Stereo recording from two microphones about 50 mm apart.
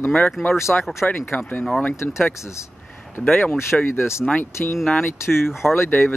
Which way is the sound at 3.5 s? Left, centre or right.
Left.